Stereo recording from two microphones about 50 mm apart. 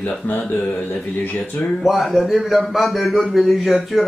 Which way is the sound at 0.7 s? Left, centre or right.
Left.